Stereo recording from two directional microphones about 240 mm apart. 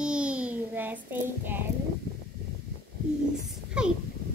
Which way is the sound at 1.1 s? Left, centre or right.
Centre.